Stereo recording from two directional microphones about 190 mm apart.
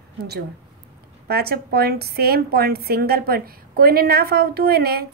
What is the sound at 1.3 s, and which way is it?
A woman's voice, 55° right (ahead or behind).